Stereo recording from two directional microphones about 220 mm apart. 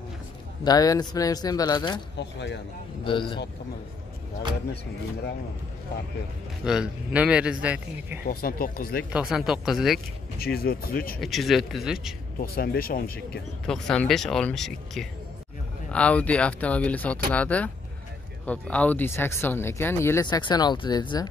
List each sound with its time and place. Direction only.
0.7 s speech: 15° left (ahead or behind)
2.1 s speech: 50° left (ahead or behind)
3.0 s speech: 20° left (ahead or behind)
6.6 s a man's voice: 5° right (ahead or behind)
8.3 s speech: 40° left (ahead or behind)
9.1 s a man's voice: centre (ahead or behind)
10.4 s speech: 45° left (ahead or behind)
11.1 s a man's voice: centre (ahead or behind)
12.4 s speech: 40° left (ahead or behind)
13.7 s a man's voice: 5° left (ahead or behind); by 21.3 s 20° left (ahead or behind)